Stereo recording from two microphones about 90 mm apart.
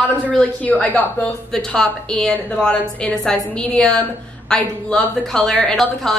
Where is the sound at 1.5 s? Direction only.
5° left (ahead or behind).